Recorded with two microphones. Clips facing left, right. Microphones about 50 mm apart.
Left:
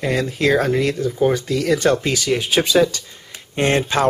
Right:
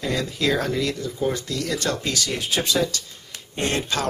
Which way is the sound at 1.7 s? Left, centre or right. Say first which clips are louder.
Left 8 dB; left.